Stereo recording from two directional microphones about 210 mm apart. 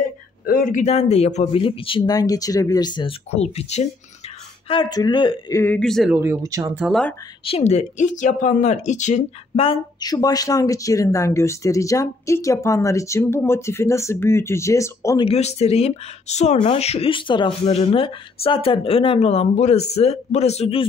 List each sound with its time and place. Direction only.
0.5 s speech: 40° left (ahead or behind); by 6.1 s centre (ahead or behind)
6.1 s speech: 10° right (ahead or behind)
7.4 s speech: 30° left (ahead or behind); by 15.2 s 15° left (ahead or behind)
15.2 s speech: 30° left (ahead or behind)